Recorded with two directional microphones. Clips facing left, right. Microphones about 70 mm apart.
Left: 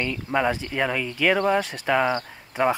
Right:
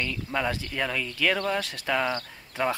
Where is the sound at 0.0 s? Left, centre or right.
Left.